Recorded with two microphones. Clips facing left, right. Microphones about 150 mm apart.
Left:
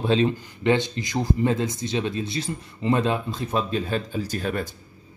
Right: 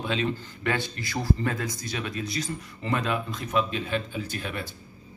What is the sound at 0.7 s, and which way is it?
Speech, 20° left (ahead or behind).